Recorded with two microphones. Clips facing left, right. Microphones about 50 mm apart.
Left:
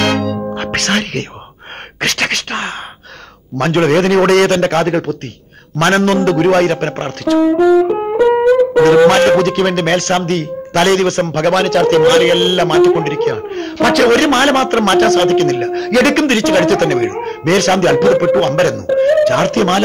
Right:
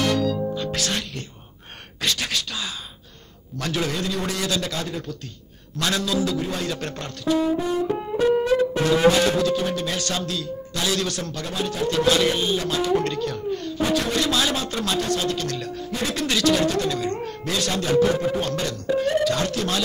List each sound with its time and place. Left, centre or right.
0.0 s music: left
5.8 s a man's voice: left
7.2 s music: left
15.8 s speech: left
16.3 s music: left